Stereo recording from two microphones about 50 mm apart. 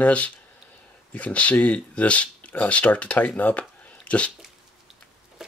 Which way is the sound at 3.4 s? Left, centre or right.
Left.